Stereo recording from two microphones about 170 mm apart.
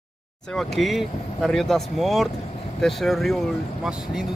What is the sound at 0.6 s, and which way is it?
Speech, centre (ahead or behind).